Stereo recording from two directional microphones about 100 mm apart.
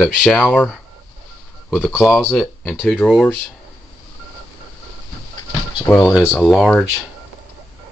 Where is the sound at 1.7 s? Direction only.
5° left (ahead or behind).